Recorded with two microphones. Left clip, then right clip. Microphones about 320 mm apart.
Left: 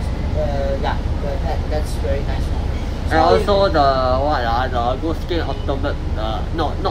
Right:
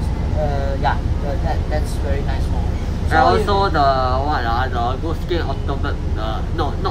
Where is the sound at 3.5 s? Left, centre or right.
Centre.